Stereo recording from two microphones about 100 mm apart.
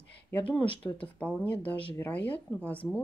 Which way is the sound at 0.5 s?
60° left (ahead or behind).